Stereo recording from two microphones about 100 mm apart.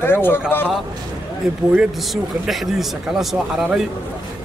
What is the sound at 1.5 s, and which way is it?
Speech, 5° right (ahead or behind).